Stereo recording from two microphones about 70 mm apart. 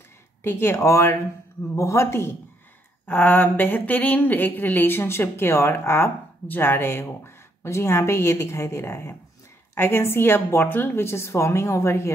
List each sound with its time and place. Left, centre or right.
0.4 s speech: left